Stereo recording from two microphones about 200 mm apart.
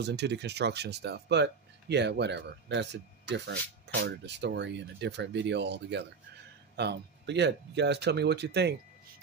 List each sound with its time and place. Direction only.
0.0 s speech: 60° right (ahead or behind)